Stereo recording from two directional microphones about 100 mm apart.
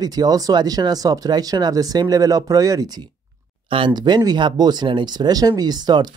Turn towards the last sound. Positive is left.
turn(degrees=-45)  # may be behind; listen again after turning